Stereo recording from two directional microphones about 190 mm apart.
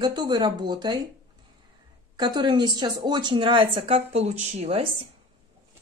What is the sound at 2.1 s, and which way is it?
Speech, 20° right (ahead or behind).